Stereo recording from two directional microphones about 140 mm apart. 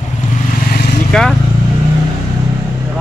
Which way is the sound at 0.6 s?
90° left.